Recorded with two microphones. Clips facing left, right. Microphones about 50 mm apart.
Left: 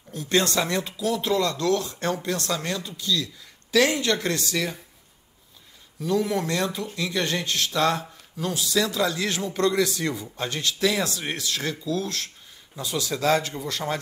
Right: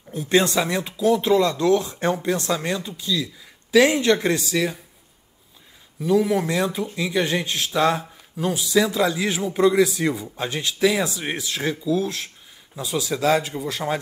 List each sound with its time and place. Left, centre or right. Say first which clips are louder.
0.1 s speech: right 4 dB; centre
5.9 s speech: right 5 dB; centre